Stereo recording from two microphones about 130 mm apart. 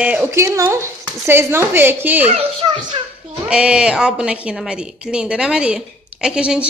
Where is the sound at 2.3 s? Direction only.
45° right (ahead or behind).